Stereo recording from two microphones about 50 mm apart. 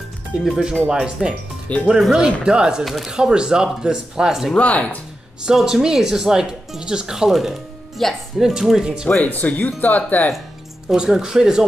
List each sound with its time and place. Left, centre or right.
0.3 s speech: centre
2.8 s speech: centre
3.1 s speech: centre
4.6 s speech: left
5.4 s speech: centre
8.0 s speech: centre
8.4 s speech: centre
9.2 s speech: left
10.9 s speech: centre